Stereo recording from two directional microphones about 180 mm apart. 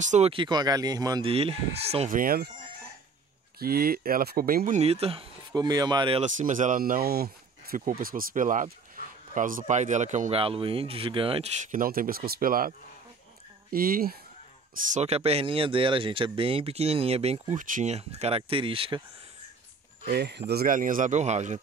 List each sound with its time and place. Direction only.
0.0 s speech: 40° right (ahead or behind); by 1.3 s 20° right (ahead or behind)
1.3 s speech: 35° right (ahead or behind)
2.1 s chicken: 55° right (ahead or behind)
3.5 s speech: 55° right (ahead or behind); by 6.2 s 25° right (ahead or behind)
6.3 s speech: 45° right (ahead or behind)
11.7 s speech: 50° right (ahead or behind)
14.9 s speech: 35° right (ahead or behind)
20.1 s speech: 70° right (ahead or behind); by 21.5 s 40° right (ahead or behind)